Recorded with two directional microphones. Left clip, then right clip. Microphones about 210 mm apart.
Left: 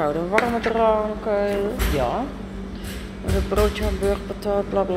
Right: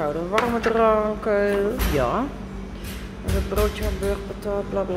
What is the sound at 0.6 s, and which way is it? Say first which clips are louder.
Speech: even; 25° right (ahead or behind).